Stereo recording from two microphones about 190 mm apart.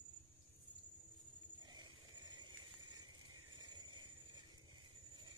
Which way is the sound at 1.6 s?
25° right (ahead or behind).